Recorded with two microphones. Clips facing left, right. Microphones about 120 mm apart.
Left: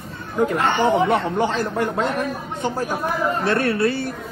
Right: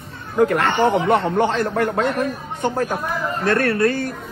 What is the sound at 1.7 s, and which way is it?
Speech, 65° right (ahead or behind).